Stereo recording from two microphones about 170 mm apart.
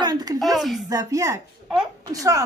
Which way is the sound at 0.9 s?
20° right (ahead or behind).